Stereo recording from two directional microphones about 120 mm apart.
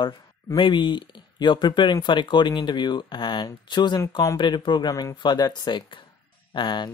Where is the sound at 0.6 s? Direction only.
40° left (ahead or behind).